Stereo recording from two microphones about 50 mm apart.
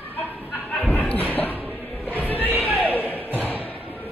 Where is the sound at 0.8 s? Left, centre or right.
Left.